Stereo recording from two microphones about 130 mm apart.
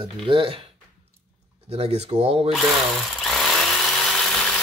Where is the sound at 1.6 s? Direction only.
55° right (ahead or behind).